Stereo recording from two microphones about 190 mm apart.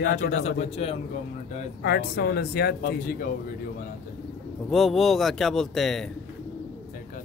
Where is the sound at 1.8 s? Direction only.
55° left (ahead or behind).